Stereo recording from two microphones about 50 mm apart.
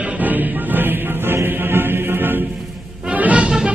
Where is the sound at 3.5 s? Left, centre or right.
Centre.